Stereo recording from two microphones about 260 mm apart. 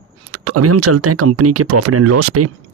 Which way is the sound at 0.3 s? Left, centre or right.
Right.